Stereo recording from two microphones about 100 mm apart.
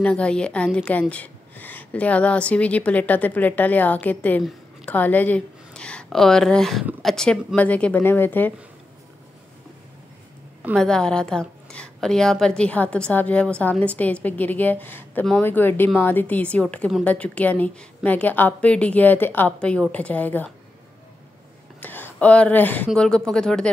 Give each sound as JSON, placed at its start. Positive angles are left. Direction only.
{"t": 0.0, "sound": "a woman's voice", "side_deg": 10}
{"t": 10.8, "sound": "a woman's voice", "side_deg": 5}
{"t": 21.7, "sound": "a woman's voice", "side_deg": 20}